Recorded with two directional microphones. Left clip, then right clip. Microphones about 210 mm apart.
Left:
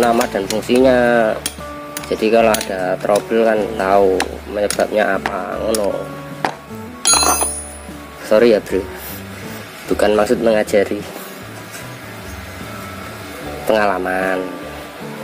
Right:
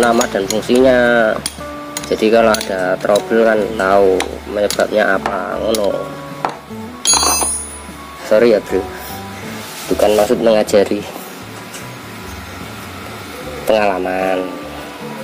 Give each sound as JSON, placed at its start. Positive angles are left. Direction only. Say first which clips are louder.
{"t": 0.0, "sound": "speech", "louder": "right 2 dB", "side_deg": 5}
{"t": 8.3, "sound": "speech", "louder": "right 1 dB", "side_deg": 15}
{"t": 10.0, "sound": "speech", "louder": "right 2 dB", "side_deg": 20}
{"t": 10.5, "sound": "speech", "louder": "right 3 dB", "side_deg": 5}
{"t": 13.7, "sound": "speech", "louder": "right 1 dB", "side_deg": 15}